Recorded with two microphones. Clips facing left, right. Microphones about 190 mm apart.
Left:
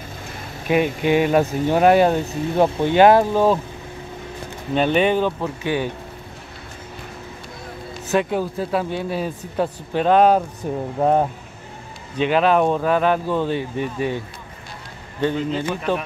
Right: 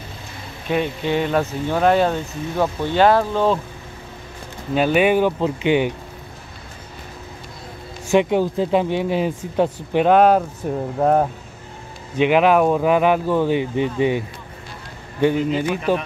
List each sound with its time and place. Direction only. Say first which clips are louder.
0.7 s speech: left 3 dB; 10° left (ahead or behind)
4.7 s speech: right 1 dB; 5° right (ahead or behind)
8.1 s speech: right 4 dB; 20° right (ahead or behind); by 11.2 s centre (ahead or behind)
12.2 s speech: right 2 dB; 15° right (ahead or behind)